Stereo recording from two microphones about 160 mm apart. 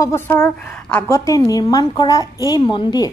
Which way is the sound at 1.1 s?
20° left (ahead or behind).